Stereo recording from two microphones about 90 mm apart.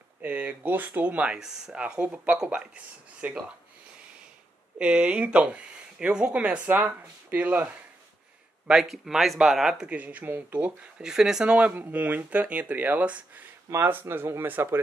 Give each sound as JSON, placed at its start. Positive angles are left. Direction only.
{"t": 0.2, "sound": "speech", "side_deg": -15}
{"t": 2.0, "sound": "speech", "side_deg": -20}
{"t": 4.7, "sound": "speech", "side_deg": -15}
{"t": 8.6, "sound": "speech", "side_deg": -5}
{"t": 9.8, "sound": "speech", "side_deg": -15}